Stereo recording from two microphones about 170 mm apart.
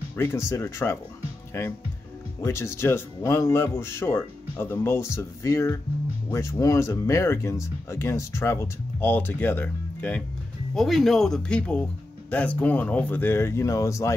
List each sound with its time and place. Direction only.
0.1 s speech: 15° left (ahead or behind)
2.4 s speech: 15° left (ahead or behind)